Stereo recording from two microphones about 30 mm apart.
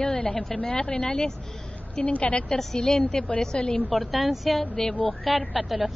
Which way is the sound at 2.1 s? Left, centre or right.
Left.